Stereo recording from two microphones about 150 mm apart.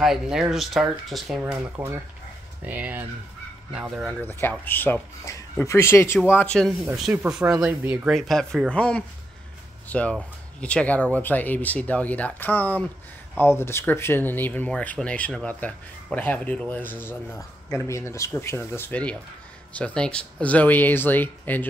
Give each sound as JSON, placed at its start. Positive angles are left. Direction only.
{"t": 0.0, "sound": "speech", "side_deg": -5}
{"t": 1.4, "sound": "speech", "side_deg": -15}
{"t": 3.9, "sound": "speech", "side_deg": 0}
{"t": 4.2, "sound": "speech", "side_deg": 15}